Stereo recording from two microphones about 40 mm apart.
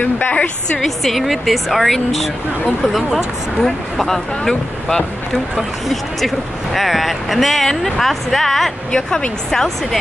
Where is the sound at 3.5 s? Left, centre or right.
Centre.